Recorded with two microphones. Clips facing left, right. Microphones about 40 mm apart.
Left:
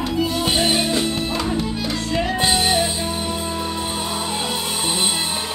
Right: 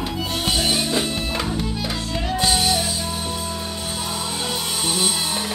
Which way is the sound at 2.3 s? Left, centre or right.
Left.